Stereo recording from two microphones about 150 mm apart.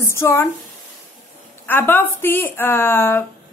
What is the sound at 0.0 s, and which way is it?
Speech, 15° left (ahead or behind).